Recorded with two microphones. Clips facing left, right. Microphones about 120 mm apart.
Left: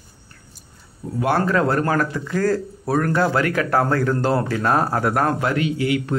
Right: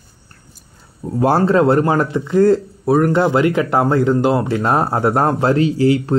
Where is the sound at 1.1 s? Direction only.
35° right (ahead or behind).